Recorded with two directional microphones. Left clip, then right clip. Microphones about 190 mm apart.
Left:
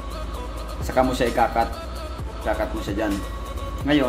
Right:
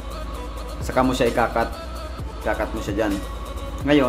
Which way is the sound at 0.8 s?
30° right (ahead or behind).